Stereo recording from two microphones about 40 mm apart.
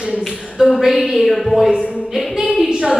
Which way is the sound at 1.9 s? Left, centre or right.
Centre.